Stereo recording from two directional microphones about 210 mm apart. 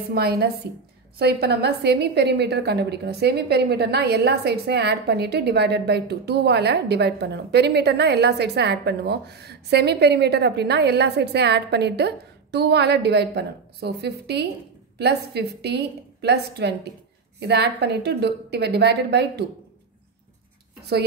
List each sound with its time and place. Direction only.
0.1 s a woman's voice: 50° right (ahead or behind)